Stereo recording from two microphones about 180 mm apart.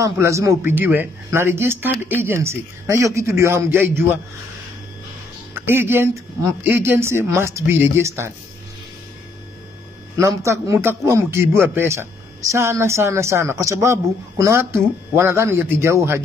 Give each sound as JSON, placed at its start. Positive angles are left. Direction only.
{"t": 0.0, "sound": "a man's voice", "side_deg": -15}
{"t": 5.5, "sound": "a man's voice", "side_deg": -10}
{"t": 10.1, "sound": "a man's voice", "side_deg": -15}